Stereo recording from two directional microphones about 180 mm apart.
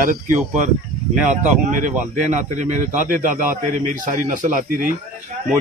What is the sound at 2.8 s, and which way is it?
Speech, 45° right (ahead or behind).